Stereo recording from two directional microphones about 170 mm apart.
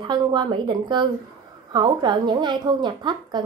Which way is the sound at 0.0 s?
25° right (ahead or behind).